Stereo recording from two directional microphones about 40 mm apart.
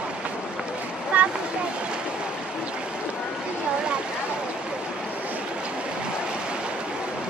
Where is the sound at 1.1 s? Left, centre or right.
Right.